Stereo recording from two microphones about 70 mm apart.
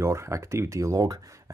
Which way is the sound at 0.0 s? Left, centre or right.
Right.